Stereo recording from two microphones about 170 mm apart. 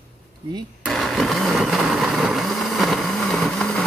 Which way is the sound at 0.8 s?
Centre (ahead or behind).